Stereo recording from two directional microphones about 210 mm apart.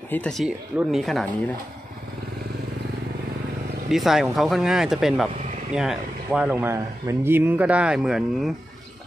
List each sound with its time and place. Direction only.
0.1 s speech: 5° left (ahead or behind)
3.9 s speech: centre (ahead or behind)